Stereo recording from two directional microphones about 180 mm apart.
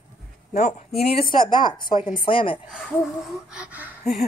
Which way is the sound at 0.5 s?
40° left (ahead or behind).